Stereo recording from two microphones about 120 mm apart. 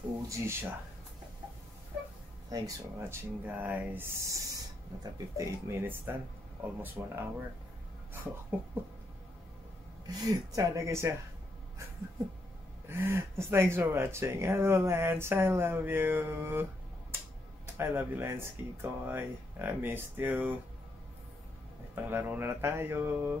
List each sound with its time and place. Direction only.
0.3 s speech: 20° right (ahead or behind)
2.5 s speech: 25° right (ahead or behind)
10.0 s speech: 30° right (ahead or behind)
12.8 s speech: 20° right (ahead or behind)
17.7 s speech: 20° right (ahead or behind)
21.9 s speech: 20° right (ahead or behind)